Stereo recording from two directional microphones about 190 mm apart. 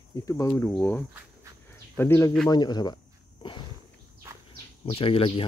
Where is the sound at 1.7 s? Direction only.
10° left (ahead or behind).